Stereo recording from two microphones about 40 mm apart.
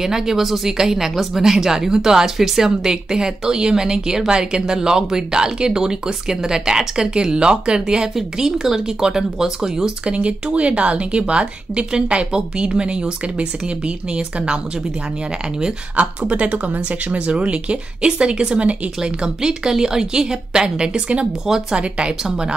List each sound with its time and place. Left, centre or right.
0.0 s a woman's voice: centre
10.1 s speech: right
16.0 s speech: right
21.5 s a woman's voice: centre
21.7 s speech: right